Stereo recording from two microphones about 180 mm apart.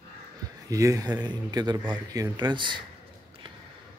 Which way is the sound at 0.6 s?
20° right (ahead or behind).